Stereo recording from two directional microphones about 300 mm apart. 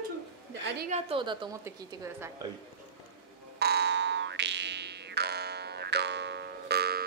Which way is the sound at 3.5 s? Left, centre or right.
Right.